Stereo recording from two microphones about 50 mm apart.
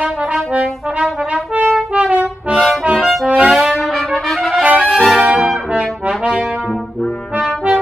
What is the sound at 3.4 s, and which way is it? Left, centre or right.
Trumpet, centre.